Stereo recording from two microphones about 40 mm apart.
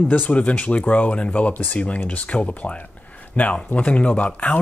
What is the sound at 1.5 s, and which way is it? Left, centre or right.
Speech, left.